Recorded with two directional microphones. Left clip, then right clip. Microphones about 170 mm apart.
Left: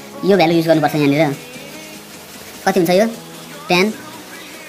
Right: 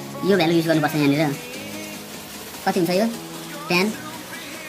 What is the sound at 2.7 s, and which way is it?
Speech, 25° left (ahead or behind).